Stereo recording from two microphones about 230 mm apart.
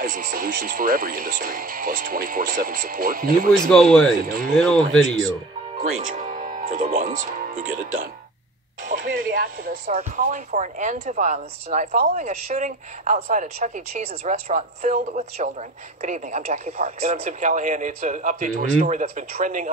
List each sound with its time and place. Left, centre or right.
0.0 s speech: right
3.6 s speech: centre
5.8 s speech: right